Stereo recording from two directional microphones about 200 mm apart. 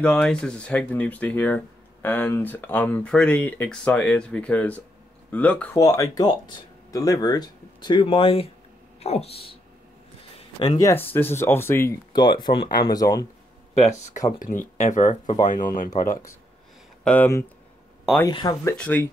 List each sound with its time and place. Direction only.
0.0 s speech: 5° left (ahead or behind); by 9.6 s 30° left (ahead or behind)
10.8 s speech: 10° left (ahead or behind)
13.7 s speech: 35° left (ahead or behind)
17.0 s speech: 5° left (ahead or behind)